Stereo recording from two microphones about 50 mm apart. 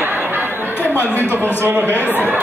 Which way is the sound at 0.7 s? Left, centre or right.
Left.